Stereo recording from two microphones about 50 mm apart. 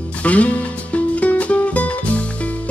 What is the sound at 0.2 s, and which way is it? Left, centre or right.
Music, left.